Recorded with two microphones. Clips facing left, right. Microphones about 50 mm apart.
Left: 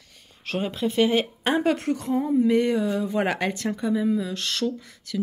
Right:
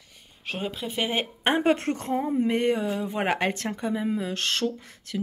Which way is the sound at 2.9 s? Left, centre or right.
Right.